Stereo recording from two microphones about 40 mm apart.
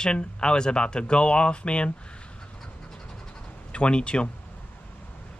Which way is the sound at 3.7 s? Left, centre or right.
Left.